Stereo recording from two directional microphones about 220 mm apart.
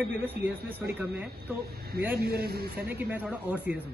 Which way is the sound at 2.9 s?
10° right (ahead or behind).